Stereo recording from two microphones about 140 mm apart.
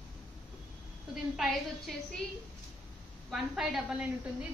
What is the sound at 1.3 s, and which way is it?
Speech, centre (ahead or behind).